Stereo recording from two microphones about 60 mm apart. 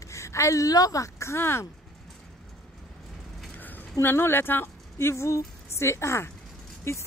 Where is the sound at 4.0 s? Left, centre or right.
Left.